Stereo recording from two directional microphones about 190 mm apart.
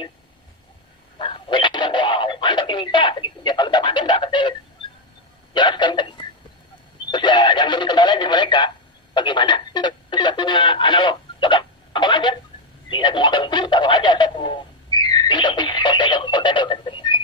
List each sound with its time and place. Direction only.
1.1 s telephone: 25° left (ahead or behind)
5.5 s a sound: 25° left (ahead or behind)
7.1 s radio: 25° left (ahead or behind)
12.9 s speech: 25° left (ahead or behind)